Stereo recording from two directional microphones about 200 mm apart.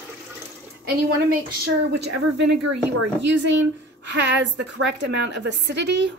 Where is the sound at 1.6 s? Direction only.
55° right (ahead or behind).